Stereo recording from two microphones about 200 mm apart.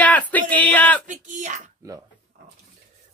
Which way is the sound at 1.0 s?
40° right (ahead or behind).